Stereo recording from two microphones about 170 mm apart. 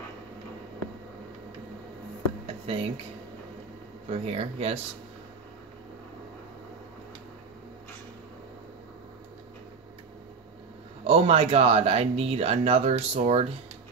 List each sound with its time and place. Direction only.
2.4 s a sound: 35° right (ahead or behind)
4.1 s speech: 35° right (ahead or behind)
11.1 s speech: 35° right (ahead or behind)